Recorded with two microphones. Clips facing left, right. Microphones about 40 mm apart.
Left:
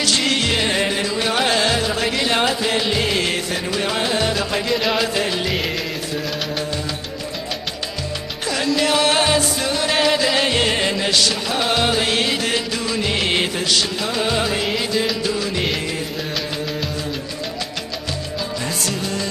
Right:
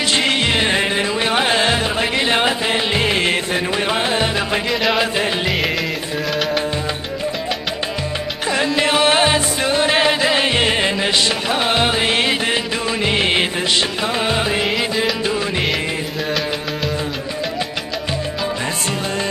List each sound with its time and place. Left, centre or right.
0.0 s music: right
4.6 s music: centre
4.9 s music: right
8.5 s music: right